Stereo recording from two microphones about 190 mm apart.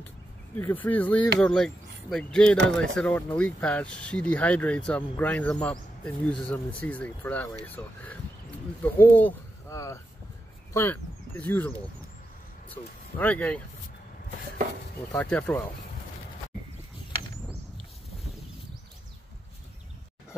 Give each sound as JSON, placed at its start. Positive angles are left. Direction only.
{"t": 0.6, "sound": "speech", "side_deg": 10}
{"t": 13.2, "sound": "speech", "side_deg": 10}
{"t": 15.1, "sound": "speech", "side_deg": 5}